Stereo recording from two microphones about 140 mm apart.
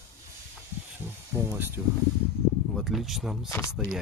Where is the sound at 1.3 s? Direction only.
15° right (ahead or behind).